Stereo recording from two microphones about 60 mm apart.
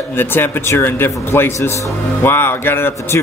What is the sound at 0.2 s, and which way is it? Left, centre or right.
Speech, left.